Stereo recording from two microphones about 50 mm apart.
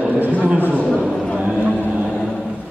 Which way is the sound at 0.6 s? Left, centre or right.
Right.